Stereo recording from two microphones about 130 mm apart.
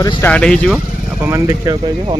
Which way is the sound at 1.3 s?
30° right (ahead or behind).